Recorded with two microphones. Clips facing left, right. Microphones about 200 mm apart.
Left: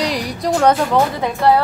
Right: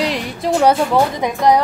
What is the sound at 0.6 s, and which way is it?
Speech, 10° right (ahead or behind).